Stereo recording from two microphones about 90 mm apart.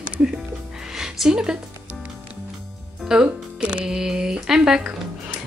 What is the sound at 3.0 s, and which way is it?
A woman's voice, 10° right (ahead or behind).